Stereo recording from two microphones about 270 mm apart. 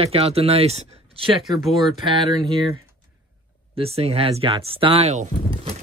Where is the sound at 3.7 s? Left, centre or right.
Right.